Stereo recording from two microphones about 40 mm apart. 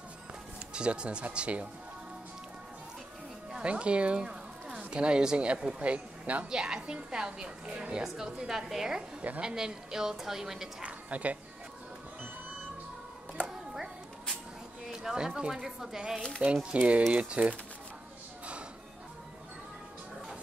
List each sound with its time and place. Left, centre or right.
0.7 s a woman's voice: right
3.6 s a woman's voice: right
6.5 s a woman's voice: right
8.0 s a woman's voice: centre
10.8 s a woman's voice: right
15.2 s a woman's voice: centre
16.2 s speech: centre
16.4 s speech: right